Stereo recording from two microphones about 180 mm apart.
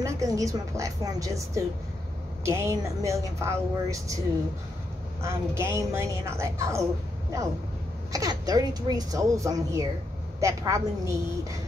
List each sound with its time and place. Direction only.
0.0 s speech: 15° right (ahead or behind)
5.2 s speech: 15° right (ahead or behind)
8.1 s a woman's voice: 20° right (ahead or behind)